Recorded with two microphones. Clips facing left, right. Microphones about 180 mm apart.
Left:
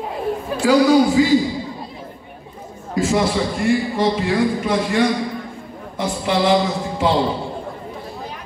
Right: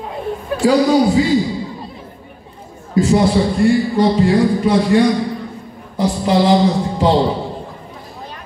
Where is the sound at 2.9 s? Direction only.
35° right (ahead or behind).